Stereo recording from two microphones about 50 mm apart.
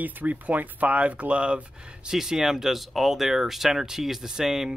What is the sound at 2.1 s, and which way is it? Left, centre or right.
Speech, centre.